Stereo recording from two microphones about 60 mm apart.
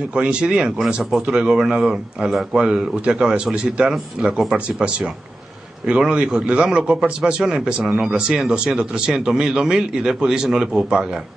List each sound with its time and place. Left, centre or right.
0.1 s a man's voice: centre